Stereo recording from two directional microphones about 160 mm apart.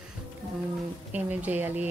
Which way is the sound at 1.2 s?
10° right (ahead or behind).